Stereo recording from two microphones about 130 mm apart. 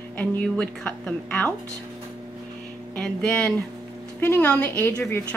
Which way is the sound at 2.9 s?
5° left (ahead or behind).